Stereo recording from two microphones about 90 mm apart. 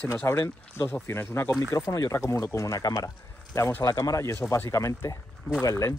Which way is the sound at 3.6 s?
35° left (ahead or behind).